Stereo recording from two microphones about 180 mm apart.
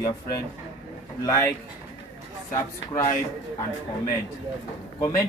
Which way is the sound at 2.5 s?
15° left (ahead or behind).